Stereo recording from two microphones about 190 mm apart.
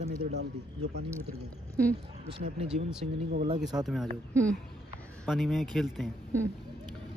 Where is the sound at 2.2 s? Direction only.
30° right (ahead or behind).